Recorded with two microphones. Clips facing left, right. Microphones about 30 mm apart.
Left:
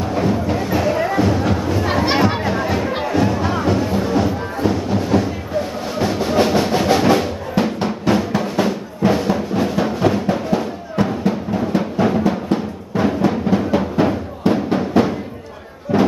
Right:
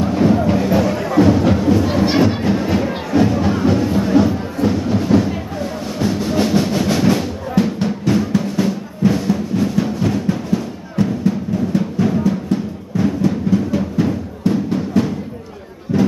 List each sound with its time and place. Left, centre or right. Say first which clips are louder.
0.0 s music: right 4 dB; centre
2.0 s music: right 1 dB; centre
5.9 s music: left 1 dB; centre
15.9 s a sound: left 1 dB; left